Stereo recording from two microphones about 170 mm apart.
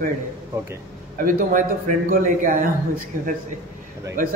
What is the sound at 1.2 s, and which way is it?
A man's voice, 50° right (ahead or behind).